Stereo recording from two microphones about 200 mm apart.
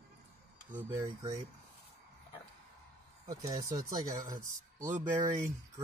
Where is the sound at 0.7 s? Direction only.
10° right (ahead or behind).